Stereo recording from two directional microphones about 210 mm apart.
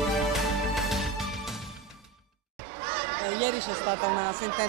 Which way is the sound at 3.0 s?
20° right (ahead or behind).